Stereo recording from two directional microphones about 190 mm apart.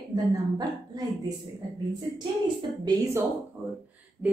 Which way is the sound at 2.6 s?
20° right (ahead or behind).